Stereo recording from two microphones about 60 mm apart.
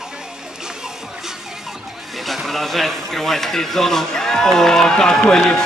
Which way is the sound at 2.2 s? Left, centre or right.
Centre.